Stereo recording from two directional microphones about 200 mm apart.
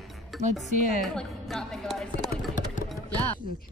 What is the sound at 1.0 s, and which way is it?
Speech, centre (ahead or behind).